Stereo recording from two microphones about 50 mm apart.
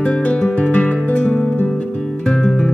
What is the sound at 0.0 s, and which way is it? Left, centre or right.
Music, left.